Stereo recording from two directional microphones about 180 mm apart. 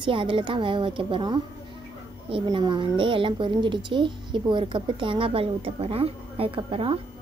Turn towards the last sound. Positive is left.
turn(degrees=-30)  # may be behind; listen again after turning